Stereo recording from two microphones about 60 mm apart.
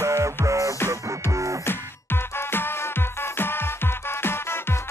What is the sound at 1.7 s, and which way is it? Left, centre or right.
Music, left.